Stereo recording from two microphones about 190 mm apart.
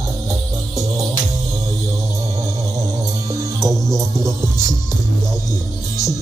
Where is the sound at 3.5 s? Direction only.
Centre (ahead or behind).